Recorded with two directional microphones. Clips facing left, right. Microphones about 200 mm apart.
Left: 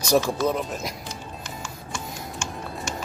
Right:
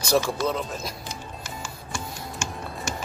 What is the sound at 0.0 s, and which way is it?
Speech, 15° left (ahead or behind).